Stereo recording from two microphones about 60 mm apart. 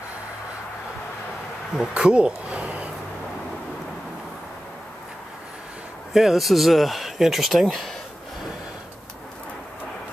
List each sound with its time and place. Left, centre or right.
1.7 s speech: centre
6.1 s speech: centre